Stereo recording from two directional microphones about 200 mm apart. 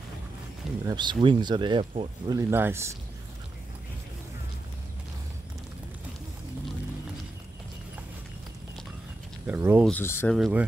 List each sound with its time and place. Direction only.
0.8 s speech: 20° right (ahead or behind)
9.5 s speech: 10° right (ahead or behind)
9.8 s speech: 10° left (ahead or behind)
10.3 s speech: centre (ahead or behind)